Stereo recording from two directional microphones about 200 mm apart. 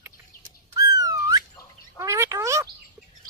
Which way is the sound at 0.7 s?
20° right (ahead or behind).